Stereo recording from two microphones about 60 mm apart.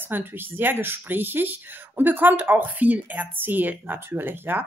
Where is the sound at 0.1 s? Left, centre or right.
Right.